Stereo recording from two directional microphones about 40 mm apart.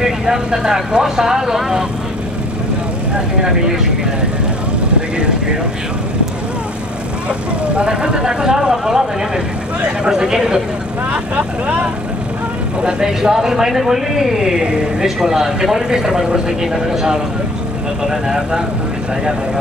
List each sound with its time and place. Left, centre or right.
0.0 s speech: centre
3.4 s speech: centre
7.2 s speech: right
10.0 s speech: centre
12.8 s speech: centre